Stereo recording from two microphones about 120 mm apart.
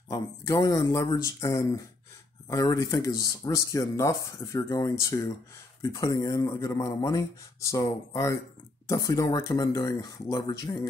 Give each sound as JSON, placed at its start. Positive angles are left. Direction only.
{"t": 0.1, "sound": "speech", "side_deg": 30}